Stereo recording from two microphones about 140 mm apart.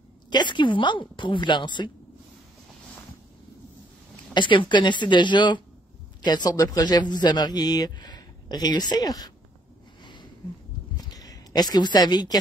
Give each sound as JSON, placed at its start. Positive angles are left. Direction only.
{"t": 0.3, "sound": "a woman's voice", "side_deg": 35}
{"t": 4.3, "sound": "a woman's voice", "side_deg": 35}
{"t": 11.0, "sound": "a sound", "side_deg": 25}